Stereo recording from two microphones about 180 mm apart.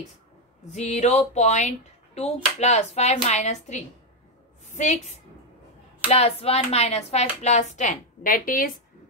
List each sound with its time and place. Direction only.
0.7 s a woman's voice: 40° left (ahead or behind)